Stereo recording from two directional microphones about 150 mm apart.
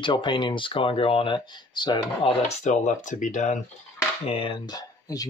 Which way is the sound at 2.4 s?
50° left (ahead or behind).